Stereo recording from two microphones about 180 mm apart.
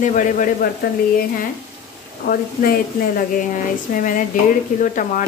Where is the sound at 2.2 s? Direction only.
55° left (ahead or behind).